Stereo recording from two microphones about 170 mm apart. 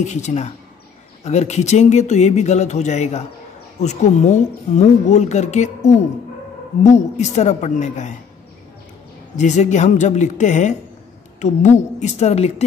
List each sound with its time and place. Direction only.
0.0 s speech: 45° left (ahead or behind)
9.4 s a woman's voice: 45° left (ahead or behind)